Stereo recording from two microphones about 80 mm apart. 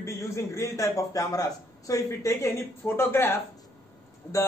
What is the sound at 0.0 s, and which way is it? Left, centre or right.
A man's voice, left.